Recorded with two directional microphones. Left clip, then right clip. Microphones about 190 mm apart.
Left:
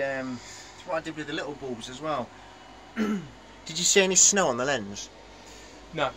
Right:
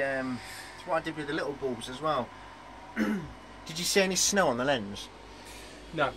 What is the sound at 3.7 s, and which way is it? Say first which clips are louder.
Speech: left 5 dB; 30° left (ahead or behind).